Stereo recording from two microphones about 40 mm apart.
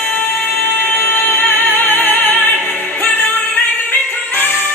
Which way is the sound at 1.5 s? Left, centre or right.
Left.